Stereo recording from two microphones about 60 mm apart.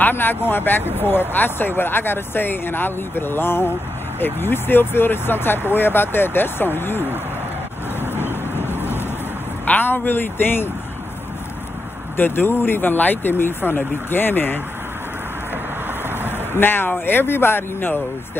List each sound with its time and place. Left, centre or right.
0.0 s speech: left
8.0 s vehicle: left
9.7 s speech: left
12.2 s speech: left
16.2 s a sound: left
17.0 s speech: left